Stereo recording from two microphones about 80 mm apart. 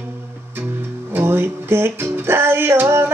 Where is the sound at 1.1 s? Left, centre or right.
Right.